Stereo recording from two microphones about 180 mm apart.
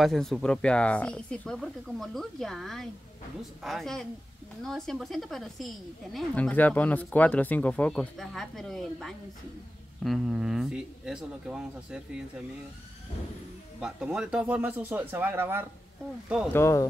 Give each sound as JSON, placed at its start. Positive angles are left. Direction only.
{"t": 0.0, "sound": "a woman's voice", "side_deg": 0}
{"t": 13.7, "sound": "speech", "side_deg": -5}
{"t": 16.5, "sound": "speech", "side_deg": 15}